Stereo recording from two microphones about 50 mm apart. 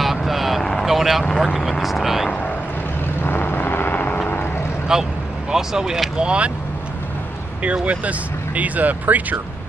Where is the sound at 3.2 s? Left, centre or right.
Left.